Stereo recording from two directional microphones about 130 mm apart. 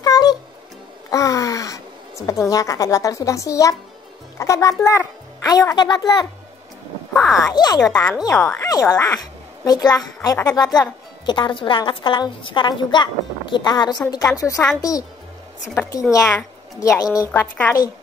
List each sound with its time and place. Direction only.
0.0 s cat: 30° left (ahead or behind)
1.1 s a child's voice: 25° left (ahead or behind)
7.3 s a woman's voice: 30° left (ahead or behind)
16.1 s a child's voice: 25° left (ahead or behind)
17.3 s a woman's voice: 15° left (ahead or behind)